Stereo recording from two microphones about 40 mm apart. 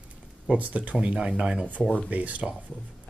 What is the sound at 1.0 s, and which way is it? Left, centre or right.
Speech, right.